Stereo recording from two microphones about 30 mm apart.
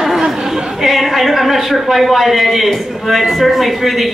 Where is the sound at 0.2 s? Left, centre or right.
Centre.